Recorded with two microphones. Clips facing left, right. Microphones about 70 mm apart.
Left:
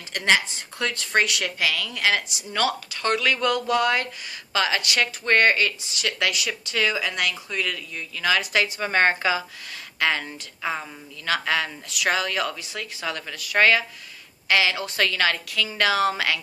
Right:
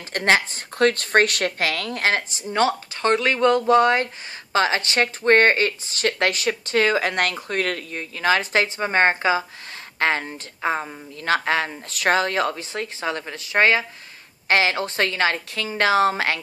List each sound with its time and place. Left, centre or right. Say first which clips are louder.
0.1 s speech: right 2 dB; right